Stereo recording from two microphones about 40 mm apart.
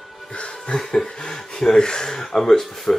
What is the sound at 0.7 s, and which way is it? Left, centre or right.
Speech, centre.